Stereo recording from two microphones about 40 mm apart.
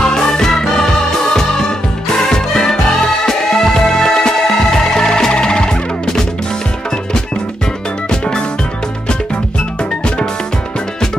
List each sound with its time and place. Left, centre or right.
0.1 s music: centre
2.2 s music: centre
8.1 s music: left